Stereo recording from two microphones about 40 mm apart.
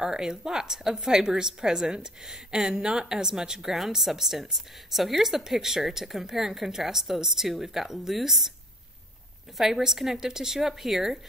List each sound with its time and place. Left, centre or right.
0.0 s a woman's voice: centre
3.7 s a woman's voice: centre
9.6 s a woman's voice: centre